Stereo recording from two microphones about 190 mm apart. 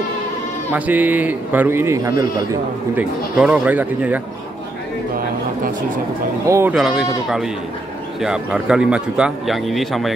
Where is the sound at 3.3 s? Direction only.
5° right (ahead or behind).